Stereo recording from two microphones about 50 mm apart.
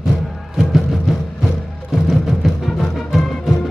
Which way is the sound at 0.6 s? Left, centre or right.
Centre.